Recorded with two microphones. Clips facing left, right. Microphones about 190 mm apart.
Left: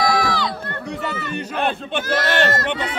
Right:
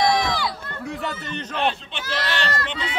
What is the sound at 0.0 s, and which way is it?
Run, 25° right (ahead or behind).